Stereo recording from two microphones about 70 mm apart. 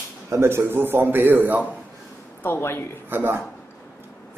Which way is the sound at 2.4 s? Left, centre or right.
Left.